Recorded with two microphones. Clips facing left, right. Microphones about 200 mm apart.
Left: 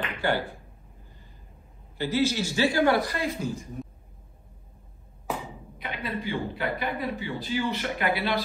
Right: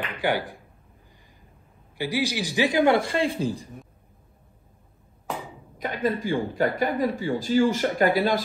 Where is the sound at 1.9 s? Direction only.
15° right (ahead or behind); by 3.7 s 30° right (ahead or behind).